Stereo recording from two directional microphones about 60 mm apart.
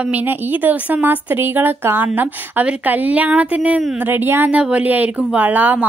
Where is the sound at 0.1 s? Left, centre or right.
Right.